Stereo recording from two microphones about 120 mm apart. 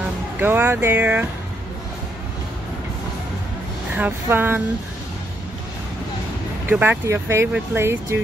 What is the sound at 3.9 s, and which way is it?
Speech, 15° right (ahead or behind).